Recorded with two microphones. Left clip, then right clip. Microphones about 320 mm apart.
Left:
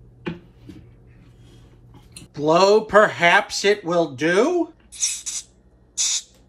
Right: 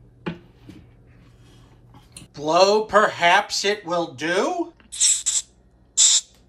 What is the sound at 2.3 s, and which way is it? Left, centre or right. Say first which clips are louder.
Speech: left 2 dB; centre.